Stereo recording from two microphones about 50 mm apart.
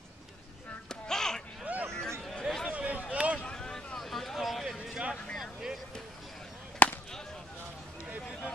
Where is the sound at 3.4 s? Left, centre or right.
Centre.